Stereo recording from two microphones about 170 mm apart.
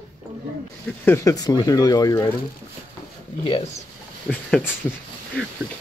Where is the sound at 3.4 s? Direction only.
30° left (ahead or behind).